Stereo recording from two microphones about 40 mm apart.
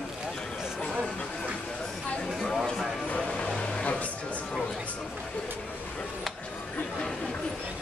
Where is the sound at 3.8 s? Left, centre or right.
Left.